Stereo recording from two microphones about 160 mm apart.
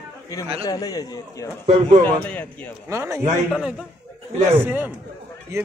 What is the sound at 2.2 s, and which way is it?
Speech, 10° left (ahead or behind).